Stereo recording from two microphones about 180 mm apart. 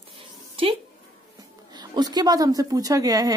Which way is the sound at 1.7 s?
20° right (ahead or behind).